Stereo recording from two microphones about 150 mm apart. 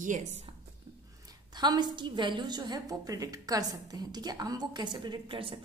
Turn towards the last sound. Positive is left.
turn(degrees=-35)  # may be behind; listen again after turning